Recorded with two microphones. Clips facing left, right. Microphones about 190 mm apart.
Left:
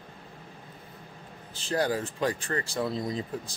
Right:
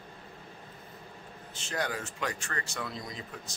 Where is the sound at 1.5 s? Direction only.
35° left (ahead or behind).